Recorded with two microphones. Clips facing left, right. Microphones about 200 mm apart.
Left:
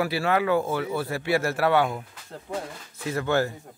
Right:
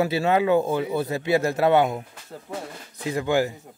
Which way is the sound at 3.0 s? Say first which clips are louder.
Right 2 dB; 15° right (ahead or behind).